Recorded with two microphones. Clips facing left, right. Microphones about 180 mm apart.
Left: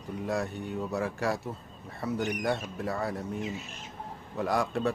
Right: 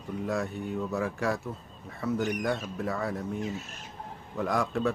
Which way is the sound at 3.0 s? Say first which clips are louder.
Right 1 dB; centre (ahead or behind).